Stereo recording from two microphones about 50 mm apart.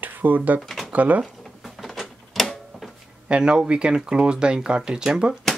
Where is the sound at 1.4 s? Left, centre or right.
Centre.